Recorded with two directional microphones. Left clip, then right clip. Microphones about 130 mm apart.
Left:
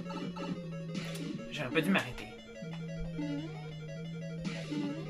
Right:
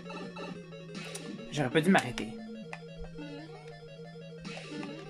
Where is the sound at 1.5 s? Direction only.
55° right (ahead or behind).